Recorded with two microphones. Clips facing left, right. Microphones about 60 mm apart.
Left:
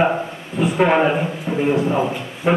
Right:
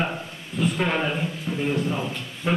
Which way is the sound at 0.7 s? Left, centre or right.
Left.